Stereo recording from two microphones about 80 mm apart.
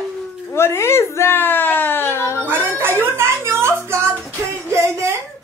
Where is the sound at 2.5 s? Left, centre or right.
Right.